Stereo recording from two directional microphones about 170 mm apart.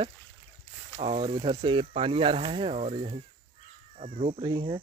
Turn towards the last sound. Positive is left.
turn(degrees=-30)  # may be behind; listen again after turning